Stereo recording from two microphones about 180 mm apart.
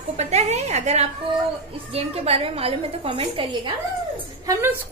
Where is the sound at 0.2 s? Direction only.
40° right (ahead or behind).